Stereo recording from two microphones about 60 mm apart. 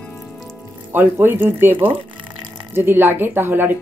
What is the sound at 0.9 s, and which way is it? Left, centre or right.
Speech, right.